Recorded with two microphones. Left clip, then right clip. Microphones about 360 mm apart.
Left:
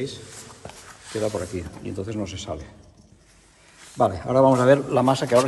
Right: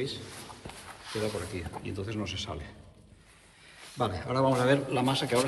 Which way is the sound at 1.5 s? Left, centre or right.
Centre.